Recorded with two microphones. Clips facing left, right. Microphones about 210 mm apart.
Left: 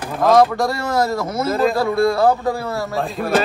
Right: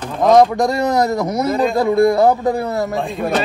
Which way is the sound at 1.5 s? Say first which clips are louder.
Left 2 dB; centre (ahead or behind).